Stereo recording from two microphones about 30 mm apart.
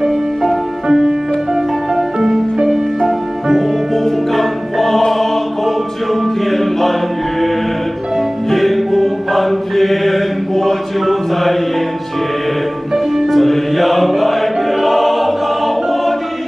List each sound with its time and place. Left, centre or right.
0.8 s music: right
4.3 s music: centre
5.1 s choir: centre
6.2 s music: centre
8.5 s music: centre
12.9 s music: centre
13.3 s music: centre